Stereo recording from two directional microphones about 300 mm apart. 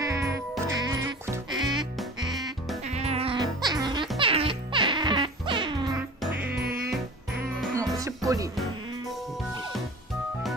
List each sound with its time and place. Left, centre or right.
0.0 s music: centre
2.9 s music: right
6.6 s music: right
7.7 s music: centre